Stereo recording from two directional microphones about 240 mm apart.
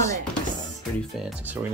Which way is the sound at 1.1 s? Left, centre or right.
Centre.